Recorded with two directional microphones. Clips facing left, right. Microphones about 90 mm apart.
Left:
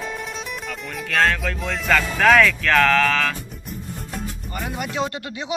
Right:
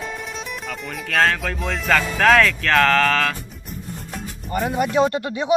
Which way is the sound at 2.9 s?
45° right (ahead or behind).